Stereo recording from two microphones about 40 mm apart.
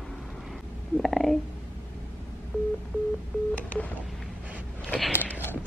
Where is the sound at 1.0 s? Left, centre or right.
Centre.